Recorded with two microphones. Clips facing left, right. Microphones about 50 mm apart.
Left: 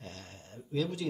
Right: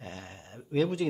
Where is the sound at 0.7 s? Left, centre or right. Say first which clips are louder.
Right 6 dB; right.